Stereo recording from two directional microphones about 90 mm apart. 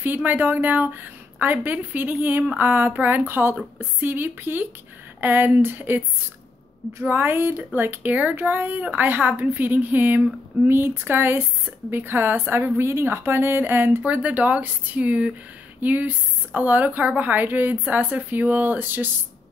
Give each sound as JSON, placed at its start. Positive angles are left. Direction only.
{"t": 0.0, "sound": "speech", "side_deg": -20}